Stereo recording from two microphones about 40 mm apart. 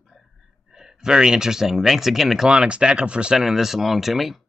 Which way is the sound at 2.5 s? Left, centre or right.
Right.